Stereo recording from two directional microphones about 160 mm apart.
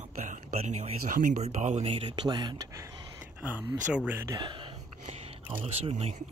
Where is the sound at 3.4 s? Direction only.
10° right (ahead or behind).